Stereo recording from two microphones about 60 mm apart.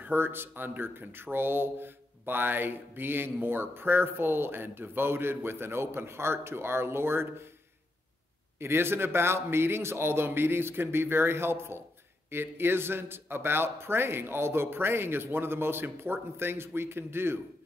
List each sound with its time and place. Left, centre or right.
0.0 s speech: right
8.5 s a man's voice: right